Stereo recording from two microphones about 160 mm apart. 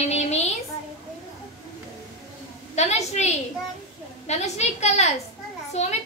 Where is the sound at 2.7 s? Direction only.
45° left (ahead or behind).